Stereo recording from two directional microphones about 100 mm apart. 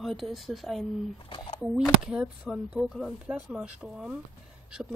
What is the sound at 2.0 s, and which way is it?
Speech, 10° right (ahead or behind).